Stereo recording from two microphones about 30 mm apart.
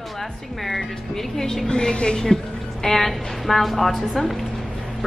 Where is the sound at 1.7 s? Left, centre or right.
Left.